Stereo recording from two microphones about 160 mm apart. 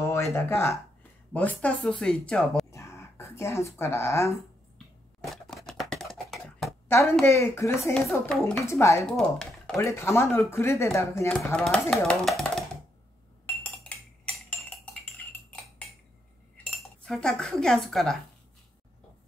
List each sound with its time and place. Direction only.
0.0 s speech: 15° left (ahead or behind); by 2.6 s centre (ahead or behind)
2.7 s a sound: 15° left (ahead or behind)
5.2 s a sound: centre (ahead or behind)
6.9 s speech: 15° left (ahead or behind)
8.4 s speech: centre (ahead or behind)
8.6 s speech: 15° left (ahead or behind)
9.0 s speech: 5° left (ahead or behind)
9.8 s speech: 15° left (ahead or behind)
11.5 s speech: 5° left (ahead or behind)
13.8 s cutlery: 10° left (ahead or behind)
16.8 s speech: 5° left (ahead or behind)